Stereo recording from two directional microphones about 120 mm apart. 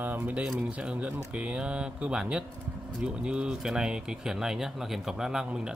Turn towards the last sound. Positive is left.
turn(degrees=-5)  # may be behind; listen again after turning